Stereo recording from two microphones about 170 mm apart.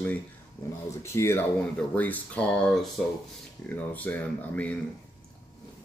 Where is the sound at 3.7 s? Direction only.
10° left (ahead or behind).